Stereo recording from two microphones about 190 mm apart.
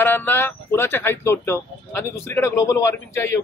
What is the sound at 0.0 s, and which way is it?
A man's voice, 10° left (ahead or behind).